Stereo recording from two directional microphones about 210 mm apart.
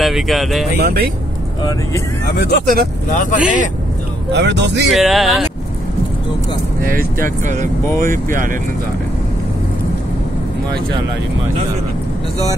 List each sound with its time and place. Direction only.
0.0 s speech: centre (ahead or behind)
0.7 s speech: 45° right (ahead or behind)
2.2 s speech: 50° left (ahead or behind)
2.6 s speech: 45° right (ahead or behind)
3.1 s speech: 35° left (ahead or behind)
4.3 s speech: 55° right (ahead or behind)
4.8 s speech: centre (ahead or behind)
6.8 s speech: 40° right (ahead or behind)